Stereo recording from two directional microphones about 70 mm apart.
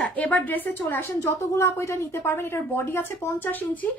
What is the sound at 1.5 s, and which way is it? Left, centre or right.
A woman's voice, left.